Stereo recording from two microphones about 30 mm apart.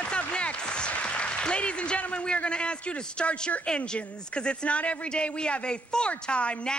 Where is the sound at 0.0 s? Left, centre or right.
Left.